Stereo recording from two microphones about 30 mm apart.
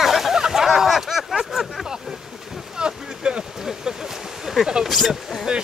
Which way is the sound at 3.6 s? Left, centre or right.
Centre.